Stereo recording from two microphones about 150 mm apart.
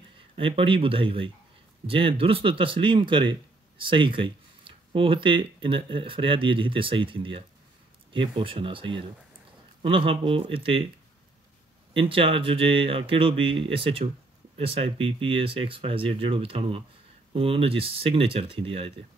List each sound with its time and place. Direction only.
0.4 s speech: 35° right (ahead or behind)
11.9 s speech: 35° right (ahead or behind)